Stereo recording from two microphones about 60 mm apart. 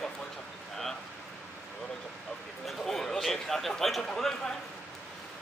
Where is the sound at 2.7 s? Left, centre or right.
Centre.